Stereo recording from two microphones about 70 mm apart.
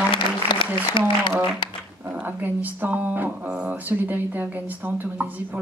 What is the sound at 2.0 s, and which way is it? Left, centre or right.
A woman's voice, right.